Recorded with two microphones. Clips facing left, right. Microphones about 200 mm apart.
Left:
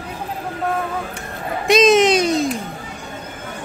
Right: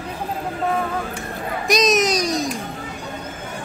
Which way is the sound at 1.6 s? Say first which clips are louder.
Left 6 dB; 30° left (ahead or behind).